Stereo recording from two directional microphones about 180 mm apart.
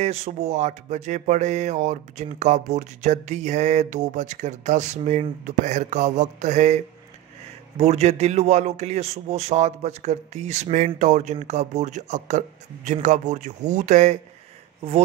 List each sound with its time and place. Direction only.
0.0 s speech: 35° right (ahead or behind)